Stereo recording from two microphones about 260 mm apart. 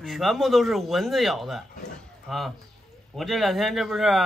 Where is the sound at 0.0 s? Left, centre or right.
Centre.